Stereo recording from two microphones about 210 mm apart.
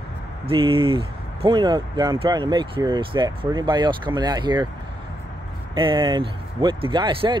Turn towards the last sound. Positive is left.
turn(degrees=-25)  # may be behind; listen again after turning